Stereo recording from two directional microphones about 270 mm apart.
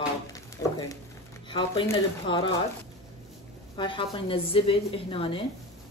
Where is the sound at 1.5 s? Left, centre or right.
Centre.